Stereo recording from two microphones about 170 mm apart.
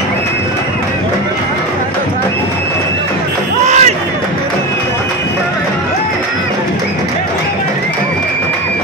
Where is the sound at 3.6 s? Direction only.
45° right (ahead or behind).